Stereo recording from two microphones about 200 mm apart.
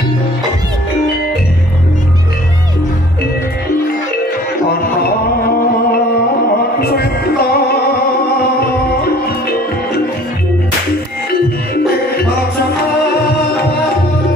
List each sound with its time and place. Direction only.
6.8 s music: 50° left (ahead or behind)